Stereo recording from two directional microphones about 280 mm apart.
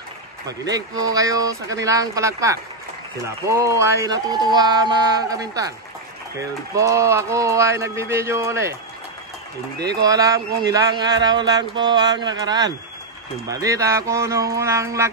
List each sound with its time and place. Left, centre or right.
0.5 s speech: centre
6.7 s speech: centre
9.8 s speech: centre